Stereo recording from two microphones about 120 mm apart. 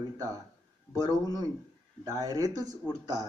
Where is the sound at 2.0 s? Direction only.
30° right (ahead or behind).